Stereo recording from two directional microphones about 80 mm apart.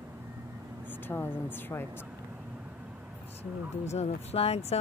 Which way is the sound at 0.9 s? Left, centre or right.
Left.